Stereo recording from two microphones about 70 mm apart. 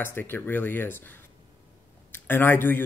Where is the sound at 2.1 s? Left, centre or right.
Left.